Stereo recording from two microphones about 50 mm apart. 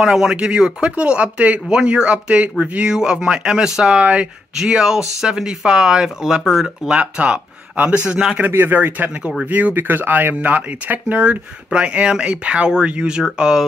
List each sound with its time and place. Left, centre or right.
0.0 s speech: centre
4.0 s speech: right
4.6 s speech: centre
8.5 s speech: right; by 13.7 s centre